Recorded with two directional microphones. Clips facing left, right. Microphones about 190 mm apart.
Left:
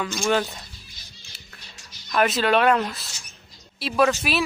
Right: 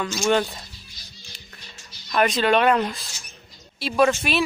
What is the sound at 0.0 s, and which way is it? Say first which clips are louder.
Speech: right 2 dB; centre (ahead or behind).